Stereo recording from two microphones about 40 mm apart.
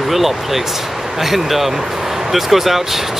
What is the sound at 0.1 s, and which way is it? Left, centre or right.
Speech, centre.